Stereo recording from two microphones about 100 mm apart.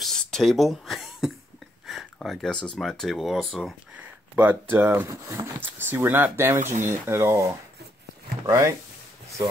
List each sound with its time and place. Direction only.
0.0 s a sound: 5° left (ahead or behind)
2.3 s speech: 5° left (ahead or behind)
4.4 s speech: 20° right (ahead or behind)
8.5 s speech: 35° right (ahead or behind)